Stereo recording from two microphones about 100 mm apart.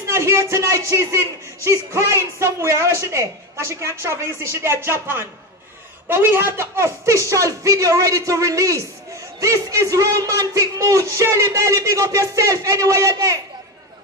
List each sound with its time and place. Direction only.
0.1 s a man's voice: 30° right (ahead or behind)